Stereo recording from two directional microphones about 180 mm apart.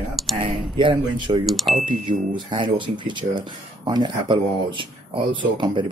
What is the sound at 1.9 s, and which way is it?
Speech, 25° right (ahead or behind).